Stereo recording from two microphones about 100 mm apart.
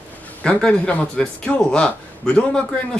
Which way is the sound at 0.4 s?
10° left (ahead or behind).